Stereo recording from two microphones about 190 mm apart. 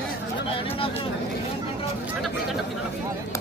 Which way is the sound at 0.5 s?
30° left (ahead or behind).